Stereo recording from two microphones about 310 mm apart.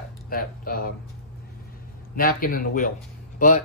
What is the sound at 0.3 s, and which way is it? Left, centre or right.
Speech, left.